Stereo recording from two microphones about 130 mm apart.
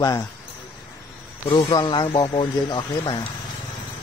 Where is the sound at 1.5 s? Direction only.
40° left (ahead or behind).